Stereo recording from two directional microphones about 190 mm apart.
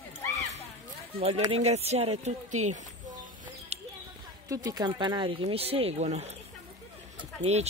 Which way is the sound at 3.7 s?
35° right (ahead or behind).